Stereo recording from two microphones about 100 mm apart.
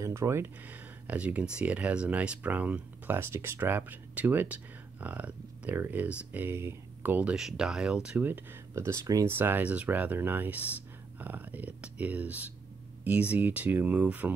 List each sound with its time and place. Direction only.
0.0 s speech: 30° right (ahead or behind); by 8.3 s 10° right (ahead or behind)
8.3 s speech: 25° right (ahead or behind)
9.3 s speech: 20° right (ahead or behind)